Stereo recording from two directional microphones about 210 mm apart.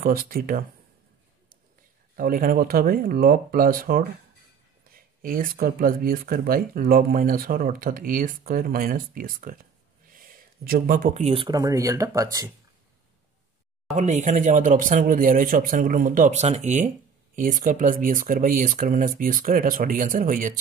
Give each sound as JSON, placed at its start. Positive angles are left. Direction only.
{"t": 0.0, "sound": "speech", "side_deg": -40}
{"t": 2.1, "sound": "speech", "side_deg": -40}
{"t": 13.9, "sound": "speech", "side_deg": -35}